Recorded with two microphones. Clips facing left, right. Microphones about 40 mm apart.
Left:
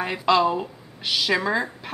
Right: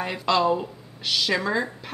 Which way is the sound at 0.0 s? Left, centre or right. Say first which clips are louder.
Left 2 dB; centre.